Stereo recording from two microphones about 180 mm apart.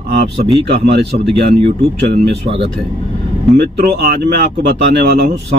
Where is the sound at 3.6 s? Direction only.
65° right (ahead or behind).